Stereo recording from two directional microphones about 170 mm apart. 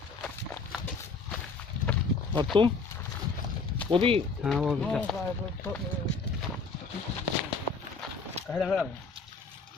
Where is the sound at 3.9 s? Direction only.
30° right (ahead or behind).